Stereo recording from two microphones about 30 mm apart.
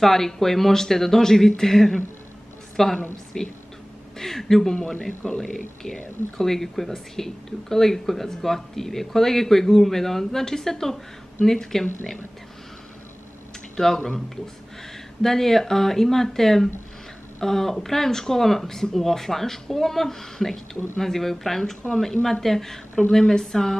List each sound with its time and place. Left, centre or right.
0.0 s a woman's voice: centre
13.7 s speech: centre